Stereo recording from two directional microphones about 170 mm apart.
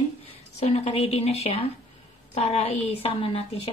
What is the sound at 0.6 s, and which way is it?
A woman's voice, 40° left (ahead or behind).